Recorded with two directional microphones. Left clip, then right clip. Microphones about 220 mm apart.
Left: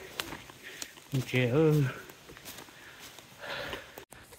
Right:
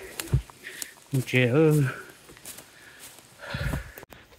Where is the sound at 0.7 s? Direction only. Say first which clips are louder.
Right 5 dB; 35° right (ahead or behind).